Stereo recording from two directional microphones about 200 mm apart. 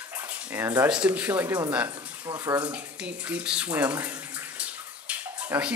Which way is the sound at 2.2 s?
20° right (ahead or behind).